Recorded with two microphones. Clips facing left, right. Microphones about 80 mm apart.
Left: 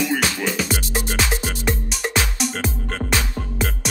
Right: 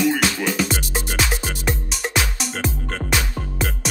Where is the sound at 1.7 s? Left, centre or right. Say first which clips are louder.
Left 1 dB; centre.